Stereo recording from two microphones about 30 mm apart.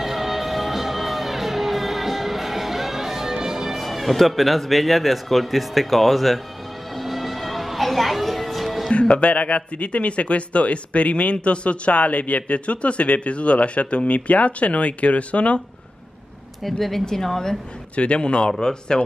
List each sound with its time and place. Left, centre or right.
0.0 s music: centre
3.7 s a man's voice: centre
7.0 s music: centre
9.2 s speech: left
17.0 s a woman's voice: centre
17.9 s a man's voice: left
18.6 s a woman's voice: left